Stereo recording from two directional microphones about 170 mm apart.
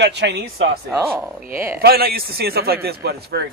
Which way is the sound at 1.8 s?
65° right (ahead or behind).